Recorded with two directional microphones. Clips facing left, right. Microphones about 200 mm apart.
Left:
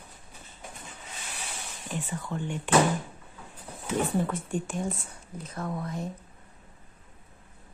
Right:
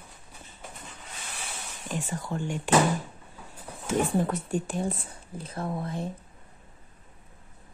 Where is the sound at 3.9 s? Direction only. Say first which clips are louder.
Right 2 dB; 45° right (ahead or behind).